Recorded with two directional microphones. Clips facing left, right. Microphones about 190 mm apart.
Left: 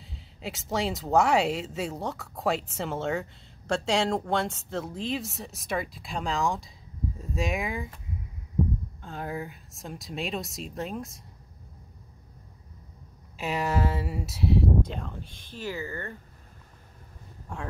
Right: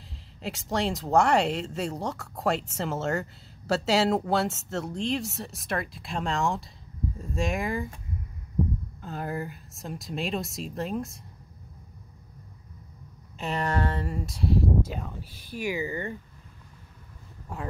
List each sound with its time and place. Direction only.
0.4 s speech: centre (ahead or behind)
9.0 s speech: centre (ahead or behind)
13.4 s speech: 5° left (ahead or behind); by 16.2 s 15° right (ahead or behind)
17.5 s speech: 5° right (ahead or behind)